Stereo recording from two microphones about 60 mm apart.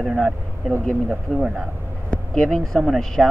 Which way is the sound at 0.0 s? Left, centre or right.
Centre.